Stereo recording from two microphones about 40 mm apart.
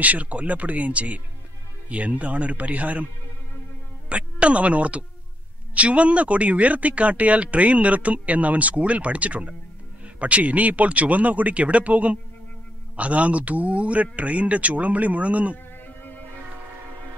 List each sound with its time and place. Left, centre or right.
0.0 s speech: right
4.1 s speech: right